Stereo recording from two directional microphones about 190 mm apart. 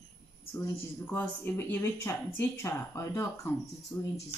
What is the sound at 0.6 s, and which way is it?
Speech, 10° left (ahead or behind).